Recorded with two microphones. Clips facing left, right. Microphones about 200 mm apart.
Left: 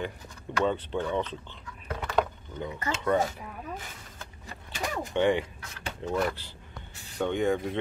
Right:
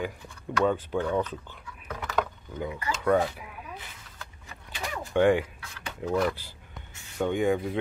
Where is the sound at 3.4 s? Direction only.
45° left (ahead or behind).